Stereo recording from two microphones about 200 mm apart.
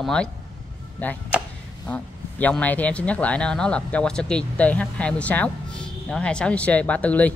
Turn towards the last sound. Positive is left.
turn(degrees=5)  # may be behind; listen again after turning